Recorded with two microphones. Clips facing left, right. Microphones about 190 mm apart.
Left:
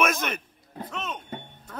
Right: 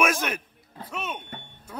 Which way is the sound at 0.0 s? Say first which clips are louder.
Right 1 dB; 10° right (ahead or behind).